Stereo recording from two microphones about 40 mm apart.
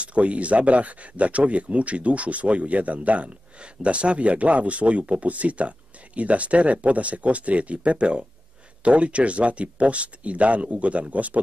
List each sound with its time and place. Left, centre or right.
0.0 s speech: right